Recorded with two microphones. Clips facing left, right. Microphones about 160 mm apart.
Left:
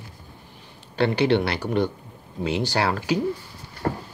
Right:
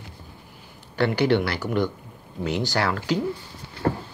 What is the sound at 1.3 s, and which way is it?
Speech, 65° left (ahead or behind).